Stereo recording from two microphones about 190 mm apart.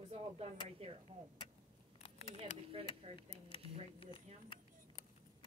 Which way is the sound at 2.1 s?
35° left (ahead or behind).